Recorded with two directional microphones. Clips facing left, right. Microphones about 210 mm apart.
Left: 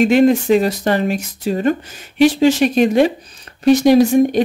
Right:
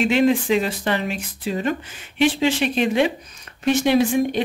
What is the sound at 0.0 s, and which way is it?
Speech, 45° left (ahead or behind).